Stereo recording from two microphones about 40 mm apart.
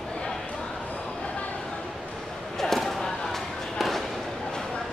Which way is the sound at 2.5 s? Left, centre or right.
Centre.